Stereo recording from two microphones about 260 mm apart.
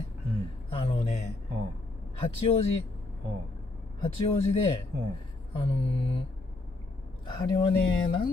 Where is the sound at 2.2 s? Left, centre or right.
Left.